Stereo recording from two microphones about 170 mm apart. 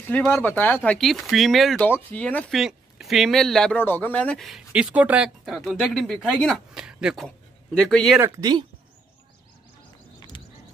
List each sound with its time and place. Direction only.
0.1 s speech: 10° left (ahead or behind)
8.2 s speech: 20° right (ahead or behind)
10.3 s a sound: 25° left (ahead or behind)